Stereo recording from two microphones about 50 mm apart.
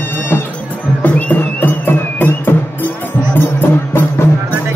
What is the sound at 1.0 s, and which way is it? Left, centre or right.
Music, left.